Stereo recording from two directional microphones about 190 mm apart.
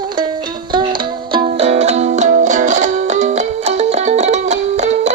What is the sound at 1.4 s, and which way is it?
Music, 35° right (ahead or behind).